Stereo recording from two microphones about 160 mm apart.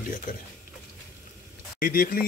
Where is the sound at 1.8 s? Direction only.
65° left (ahead or behind).